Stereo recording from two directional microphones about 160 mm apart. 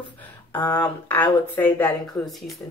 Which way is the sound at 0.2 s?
10° left (ahead or behind).